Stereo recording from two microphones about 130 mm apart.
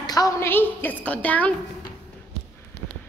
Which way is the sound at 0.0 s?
30° left (ahead or behind).